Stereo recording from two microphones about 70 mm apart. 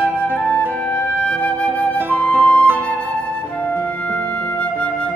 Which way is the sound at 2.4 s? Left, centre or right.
Centre.